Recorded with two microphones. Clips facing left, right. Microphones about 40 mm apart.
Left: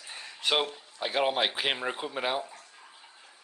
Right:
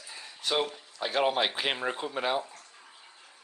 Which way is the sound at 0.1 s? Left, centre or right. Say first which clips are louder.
Left 3 dB; left.